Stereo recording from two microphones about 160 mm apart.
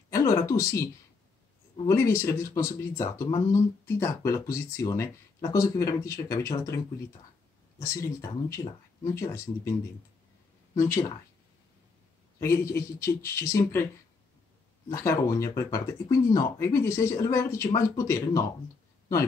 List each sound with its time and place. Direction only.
0.1 s a sound: 20° left (ahead or behind)
1.9 s speech: 15° left (ahead or behind)
7.8 s speech: 20° left (ahead or behind)
12.4 s speech: 15° left (ahead or behind)
14.9 s speech: 20° left (ahead or behind)